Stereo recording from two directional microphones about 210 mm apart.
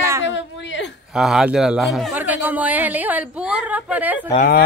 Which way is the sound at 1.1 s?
5° right (ahead or behind).